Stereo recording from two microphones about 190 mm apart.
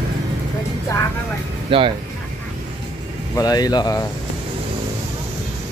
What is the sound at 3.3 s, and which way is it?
Speech, 20° left (ahead or behind).